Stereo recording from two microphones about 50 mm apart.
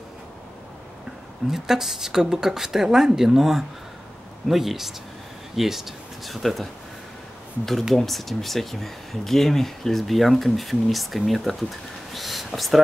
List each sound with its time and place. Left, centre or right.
1.5 s speech: centre
7.9 s speech: centre